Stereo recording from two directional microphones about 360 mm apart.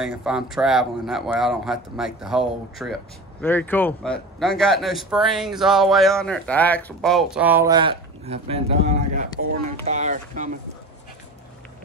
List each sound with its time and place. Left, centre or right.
0.0 s speech: centre; by 10.5 s right